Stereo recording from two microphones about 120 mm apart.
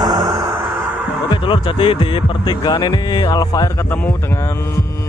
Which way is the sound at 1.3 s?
45° left (ahead or behind).